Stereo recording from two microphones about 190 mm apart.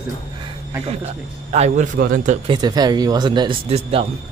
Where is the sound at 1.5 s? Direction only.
35° right (ahead or behind).